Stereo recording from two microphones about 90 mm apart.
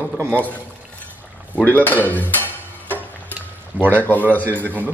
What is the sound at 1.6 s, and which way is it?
Speech, 20° left (ahead or behind).